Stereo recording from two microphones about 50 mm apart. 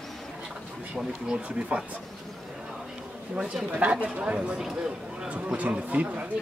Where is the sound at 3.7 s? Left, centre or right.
Right.